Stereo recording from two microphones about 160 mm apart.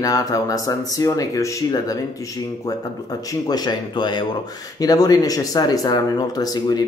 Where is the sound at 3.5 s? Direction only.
25° left (ahead or behind).